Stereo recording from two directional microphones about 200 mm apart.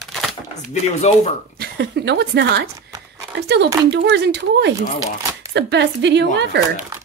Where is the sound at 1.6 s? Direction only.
55° right (ahead or behind).